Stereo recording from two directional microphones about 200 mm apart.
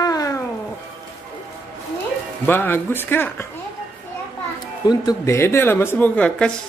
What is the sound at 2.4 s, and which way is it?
Speech, 10° left (ahead or behind).